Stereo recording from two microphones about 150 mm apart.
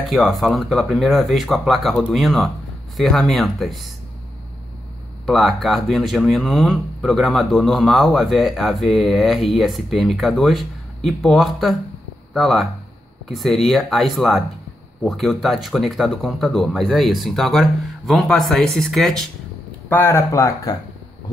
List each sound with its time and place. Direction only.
0.0 s speech: centre (ahead or behind)
5.2 s speech: centre (ahead or behind)
19.9 s speech: 15° left (ahead or behind)